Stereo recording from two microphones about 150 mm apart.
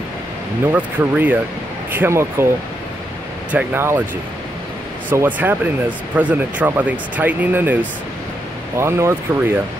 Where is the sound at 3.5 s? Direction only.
15° right (ahead or behind).